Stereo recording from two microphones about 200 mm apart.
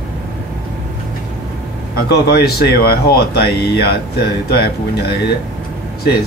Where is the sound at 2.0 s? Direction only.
50° left (ahead or behind).